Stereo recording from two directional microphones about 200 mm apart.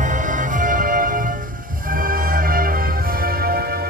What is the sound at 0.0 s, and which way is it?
Music, 40° right (ahead or behind).